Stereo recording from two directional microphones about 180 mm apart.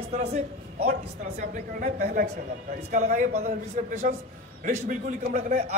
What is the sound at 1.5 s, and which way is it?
A man's voice, 45° right (ahead or behind).